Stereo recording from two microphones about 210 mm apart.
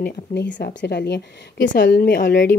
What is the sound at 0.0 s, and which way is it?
A woman's voice, 55° left (ahead or behind).